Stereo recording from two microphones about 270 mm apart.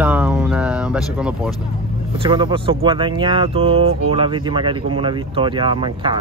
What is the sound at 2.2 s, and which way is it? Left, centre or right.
Speech, centre.